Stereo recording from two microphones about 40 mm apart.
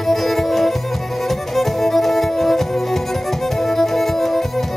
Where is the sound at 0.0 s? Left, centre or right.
Centre.